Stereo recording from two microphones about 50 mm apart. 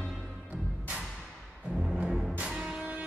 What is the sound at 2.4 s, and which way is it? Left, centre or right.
Music, centre.